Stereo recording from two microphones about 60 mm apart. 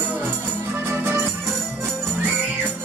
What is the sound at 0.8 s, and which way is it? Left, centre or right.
Music, right.